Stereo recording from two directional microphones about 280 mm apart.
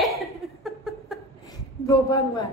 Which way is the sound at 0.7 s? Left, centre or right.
Centre.